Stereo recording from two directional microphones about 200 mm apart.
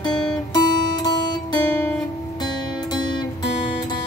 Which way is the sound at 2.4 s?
20° left (ahead or behind).